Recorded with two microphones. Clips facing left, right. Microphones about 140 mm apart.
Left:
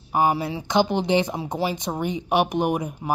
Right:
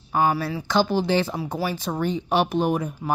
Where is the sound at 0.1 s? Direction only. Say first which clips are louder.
Left 1 dB; 15° left (ahead or behind).